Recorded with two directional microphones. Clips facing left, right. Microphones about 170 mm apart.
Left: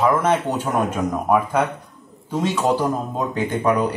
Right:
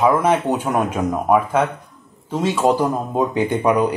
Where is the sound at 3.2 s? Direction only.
10° right (ahead or behind).